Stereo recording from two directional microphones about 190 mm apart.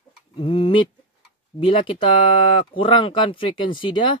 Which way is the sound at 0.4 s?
30° left (ahead or behind).